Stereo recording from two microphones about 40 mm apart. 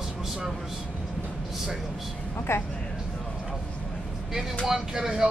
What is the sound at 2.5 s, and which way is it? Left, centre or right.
Speech, left.